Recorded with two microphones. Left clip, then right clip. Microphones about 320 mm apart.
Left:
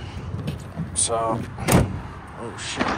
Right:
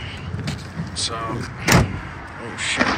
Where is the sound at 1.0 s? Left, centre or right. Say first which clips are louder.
Left 2 dB; centre.